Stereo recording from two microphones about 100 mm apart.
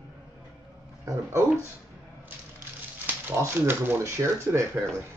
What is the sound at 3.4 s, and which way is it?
Speech, 25° right (ahead or behind).